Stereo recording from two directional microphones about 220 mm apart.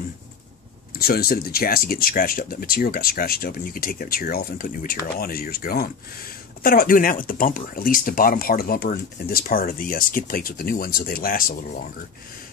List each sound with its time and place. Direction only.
0.9 s speech: 45° left (ahead or behind)